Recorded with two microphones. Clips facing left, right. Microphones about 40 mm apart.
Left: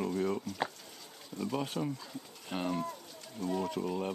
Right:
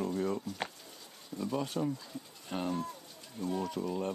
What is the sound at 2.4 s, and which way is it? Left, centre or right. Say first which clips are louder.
Livestock: even; centre.